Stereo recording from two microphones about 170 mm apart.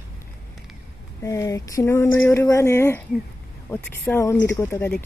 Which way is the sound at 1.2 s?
20° left (ahead or behind).